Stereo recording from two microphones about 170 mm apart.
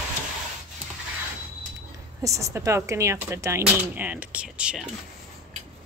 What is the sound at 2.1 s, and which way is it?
Speech, 20° right (ahead or behind).